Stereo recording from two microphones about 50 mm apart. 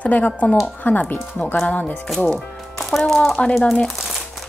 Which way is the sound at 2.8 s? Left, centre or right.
Centre.